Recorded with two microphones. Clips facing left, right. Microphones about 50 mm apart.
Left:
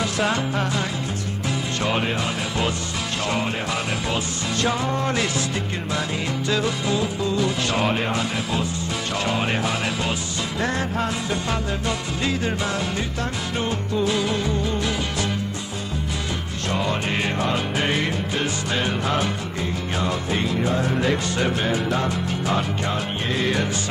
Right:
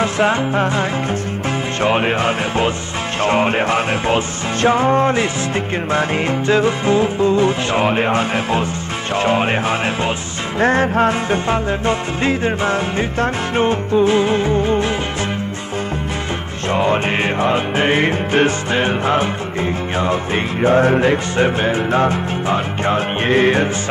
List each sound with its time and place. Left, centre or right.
0.0 s music: right
16.7 s music: right